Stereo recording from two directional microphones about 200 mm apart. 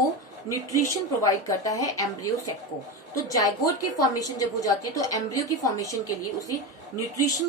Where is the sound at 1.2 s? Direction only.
15° left (ahead or behind).